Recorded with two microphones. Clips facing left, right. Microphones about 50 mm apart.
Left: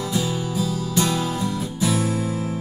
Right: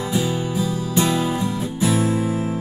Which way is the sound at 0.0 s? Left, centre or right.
Right.